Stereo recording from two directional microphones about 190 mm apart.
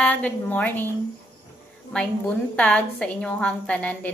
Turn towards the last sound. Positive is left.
turn(degrees=5)  # may be behind; listen again after turning